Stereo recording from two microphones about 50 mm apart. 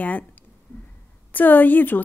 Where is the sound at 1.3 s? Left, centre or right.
Left.